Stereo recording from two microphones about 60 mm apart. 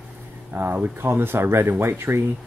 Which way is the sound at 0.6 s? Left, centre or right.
Right.